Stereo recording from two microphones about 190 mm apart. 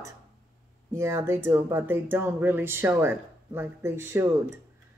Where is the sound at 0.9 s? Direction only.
15° right (ahead or behind).